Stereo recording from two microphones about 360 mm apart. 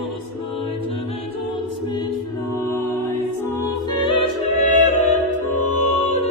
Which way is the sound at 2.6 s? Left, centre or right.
Centre.